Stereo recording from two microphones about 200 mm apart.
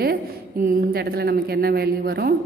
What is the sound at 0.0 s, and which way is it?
A woman's voice, 50° right (ahead or behind).